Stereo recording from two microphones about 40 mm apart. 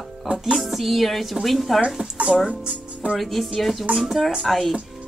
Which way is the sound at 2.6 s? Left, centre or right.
Right.